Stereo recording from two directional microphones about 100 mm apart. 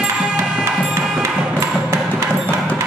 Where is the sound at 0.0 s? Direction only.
10° right (ahead or behind).